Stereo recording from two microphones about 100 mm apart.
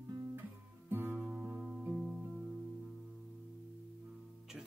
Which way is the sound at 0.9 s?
20° right (ahead or behind).